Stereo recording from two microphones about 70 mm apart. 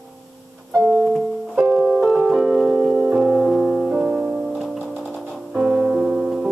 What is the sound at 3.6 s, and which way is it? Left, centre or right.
Music, centre.